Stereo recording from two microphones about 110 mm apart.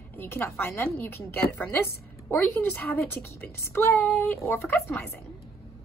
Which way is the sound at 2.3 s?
15° left (ahead or behind).